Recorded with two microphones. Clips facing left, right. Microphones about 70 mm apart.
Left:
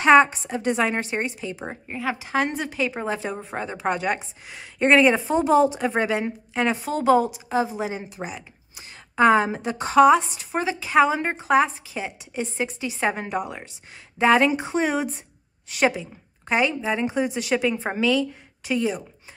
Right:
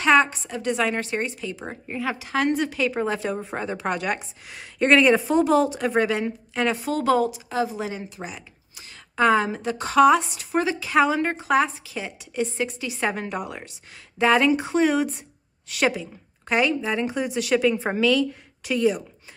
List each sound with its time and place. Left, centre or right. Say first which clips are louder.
0.0 s a woman's voice: left 3 dB; centre
9.1 s a woman's voice: left 2 dB; centre
13.4 s a woman's voice: left 2 dB; centre